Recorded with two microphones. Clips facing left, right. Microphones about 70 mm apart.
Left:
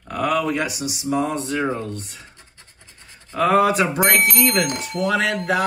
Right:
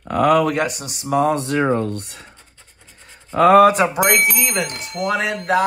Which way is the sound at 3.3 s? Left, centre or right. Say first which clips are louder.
Right 6 dB; right.